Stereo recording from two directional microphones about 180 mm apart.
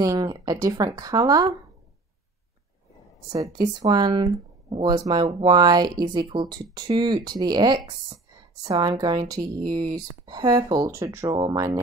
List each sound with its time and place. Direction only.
0.0 s speech: 20° right (ahead or behind)
3.3 s speech: 20° right (ahead or behind)